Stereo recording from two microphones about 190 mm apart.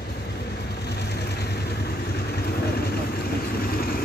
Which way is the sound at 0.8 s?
60° left (ahead or behind).